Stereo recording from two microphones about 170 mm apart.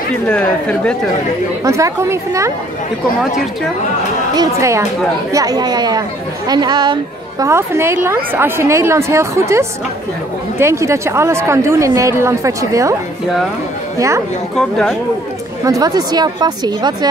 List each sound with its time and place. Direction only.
0.3 s speech: 5° left (ahead or behind)
1.6 s speech: 15° right (ahead or behind)
4.4 s speech: 15° right (ahead or behind)
13.9 s a woman's voice: 20° right (ahead or behind)
14.5 s speech: 5° left (ahead or behind)
15.6 s a woman's voice: 20° right (ahead or behind)